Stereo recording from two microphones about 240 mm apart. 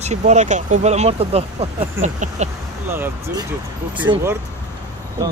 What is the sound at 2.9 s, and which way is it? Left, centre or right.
Speech, centre.